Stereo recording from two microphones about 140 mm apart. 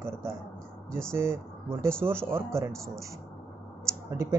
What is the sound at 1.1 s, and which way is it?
Speech, 20° right (ahead or behind).